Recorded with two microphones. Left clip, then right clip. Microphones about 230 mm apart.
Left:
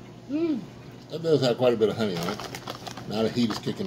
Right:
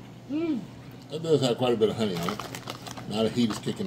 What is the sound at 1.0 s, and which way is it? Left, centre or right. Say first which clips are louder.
A man's voice: left 1 dB; centre.